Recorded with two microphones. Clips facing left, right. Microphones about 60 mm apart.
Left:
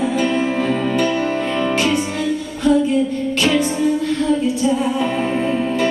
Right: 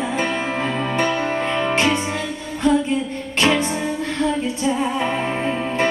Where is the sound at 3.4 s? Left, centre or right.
Right.